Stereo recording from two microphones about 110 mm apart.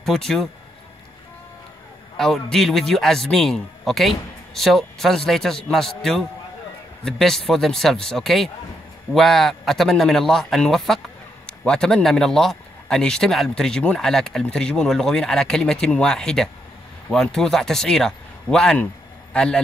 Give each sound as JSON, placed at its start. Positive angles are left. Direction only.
{"t": 2.1, "sound": "a man's voice", "side_deg": 5}
{"t": 7.1, "sound": "a man's voice", "side_deg": 5}